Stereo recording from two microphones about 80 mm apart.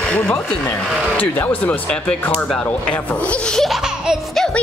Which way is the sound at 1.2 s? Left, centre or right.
Left.